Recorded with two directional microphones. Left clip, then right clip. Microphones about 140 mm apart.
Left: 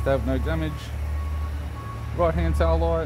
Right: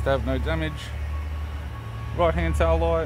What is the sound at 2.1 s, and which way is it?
Speech, centre (ahead or behind).